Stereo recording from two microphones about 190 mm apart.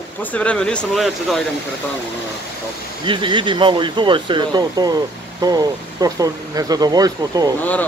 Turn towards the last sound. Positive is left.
turn(degrees=-20)  # may be behind; listen again after turning